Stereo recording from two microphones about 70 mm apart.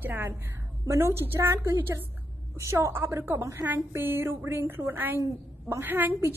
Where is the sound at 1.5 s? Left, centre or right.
Right.